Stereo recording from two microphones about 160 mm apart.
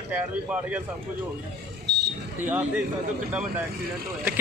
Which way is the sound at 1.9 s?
90° right.